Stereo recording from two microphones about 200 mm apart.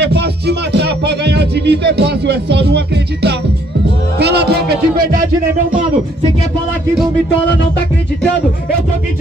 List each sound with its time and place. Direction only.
0.0 s music: 55° right (ahead or behind)